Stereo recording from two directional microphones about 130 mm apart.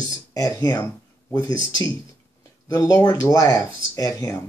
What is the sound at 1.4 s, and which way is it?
Speech, 30° left (ahead or behind).